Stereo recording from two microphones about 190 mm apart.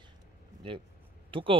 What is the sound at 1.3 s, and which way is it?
Speech, 25° right (ahead or behind).